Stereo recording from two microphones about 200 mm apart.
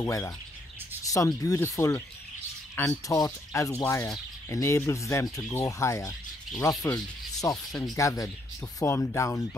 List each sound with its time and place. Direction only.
0.0 s speech: 15° left (ahead or behind)
6.6 s sanding: 15° left (ahead or behind)
7.9 s speech: 15° left (ahead or behind)